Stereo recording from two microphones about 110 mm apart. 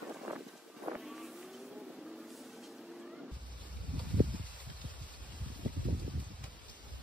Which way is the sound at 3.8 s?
45° right (ahead or behind).